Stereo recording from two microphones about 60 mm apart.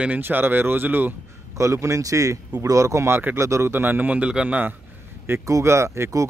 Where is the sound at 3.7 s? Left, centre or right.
Right.